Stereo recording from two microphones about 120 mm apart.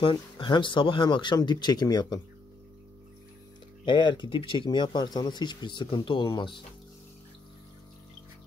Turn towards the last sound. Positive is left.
turn(degrees=40)  # may be behind; listen again after turning